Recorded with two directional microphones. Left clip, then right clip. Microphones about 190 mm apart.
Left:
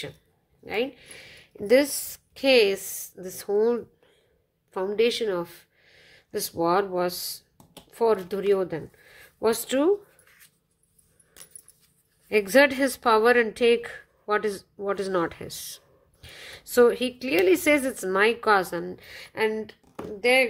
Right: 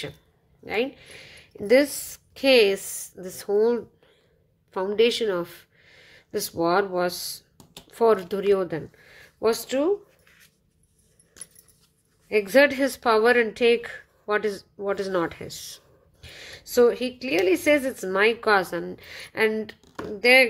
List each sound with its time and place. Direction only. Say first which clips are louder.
0.7 s a woman's voice: right 2 dB; centre (ahead or behind); by 10.5 s 20° left (ahead or behind)
12.3 s a woman's voice: right 1 dB; 15° left (ahead or behind); by 20.4 s 5° right (ahead or behind)